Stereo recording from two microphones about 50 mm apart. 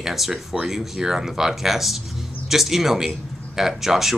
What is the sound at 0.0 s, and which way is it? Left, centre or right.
Speech, centre.